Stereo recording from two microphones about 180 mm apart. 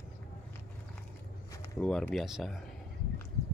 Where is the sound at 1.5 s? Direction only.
20° left (ahead or behind).